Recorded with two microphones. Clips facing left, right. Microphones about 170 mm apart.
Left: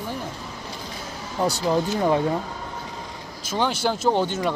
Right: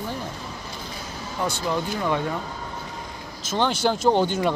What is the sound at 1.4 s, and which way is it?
Speech, 35° left (ahead or behind).